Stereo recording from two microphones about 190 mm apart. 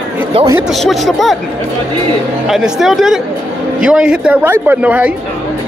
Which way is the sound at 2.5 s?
Centre (ahead or behind).